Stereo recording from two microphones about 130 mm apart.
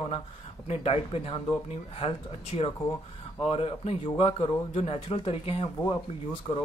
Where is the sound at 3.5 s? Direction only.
50° left (ahead or behind).